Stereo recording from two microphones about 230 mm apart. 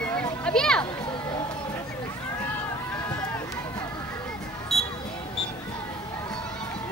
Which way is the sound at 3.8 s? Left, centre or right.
Centre.